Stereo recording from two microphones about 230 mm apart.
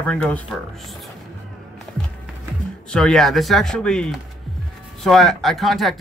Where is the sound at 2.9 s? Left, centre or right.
Centre.